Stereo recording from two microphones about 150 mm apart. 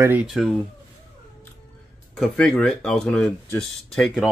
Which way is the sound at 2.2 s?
5° left (ahead or behind).